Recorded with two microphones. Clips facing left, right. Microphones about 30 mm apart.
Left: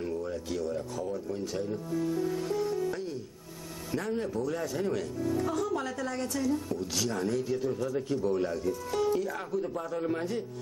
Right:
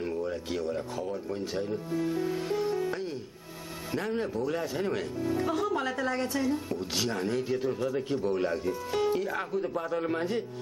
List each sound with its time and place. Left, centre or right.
0.0 s a man's voice: right